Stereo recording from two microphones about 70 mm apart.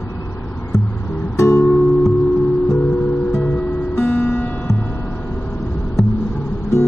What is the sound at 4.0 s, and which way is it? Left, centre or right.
Music, left.